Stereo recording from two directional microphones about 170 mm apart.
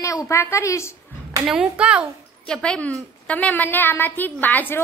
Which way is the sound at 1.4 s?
5° right (ahead or behind).